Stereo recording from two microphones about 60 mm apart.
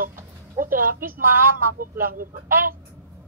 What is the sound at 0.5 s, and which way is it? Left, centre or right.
A woman's voice, right.